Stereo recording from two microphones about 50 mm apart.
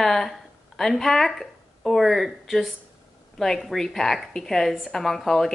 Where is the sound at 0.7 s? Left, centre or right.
Centre.